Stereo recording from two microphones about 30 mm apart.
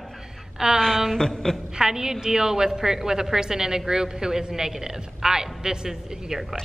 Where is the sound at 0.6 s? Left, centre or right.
Right.